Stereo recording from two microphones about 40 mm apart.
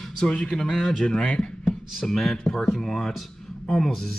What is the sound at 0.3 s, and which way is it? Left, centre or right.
Speech, centre.